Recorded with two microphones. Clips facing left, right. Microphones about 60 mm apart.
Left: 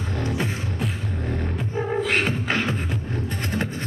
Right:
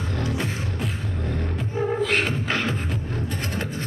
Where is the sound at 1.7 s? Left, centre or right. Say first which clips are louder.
Even; centre.